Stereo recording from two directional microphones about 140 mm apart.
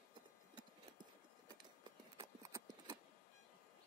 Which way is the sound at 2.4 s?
25° right (ahead or behind).